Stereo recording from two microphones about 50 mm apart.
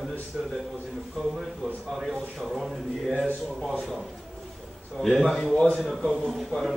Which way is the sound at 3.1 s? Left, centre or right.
Right.